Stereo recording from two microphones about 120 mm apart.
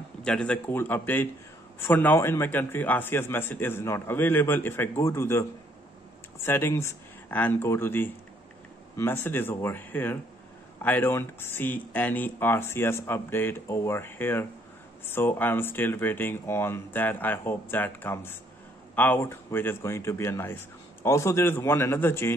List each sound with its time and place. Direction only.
0.2 s a man's voice: 5° left (ahead or behind)
0.7 s a man's voice: 20° left (ahead or behind)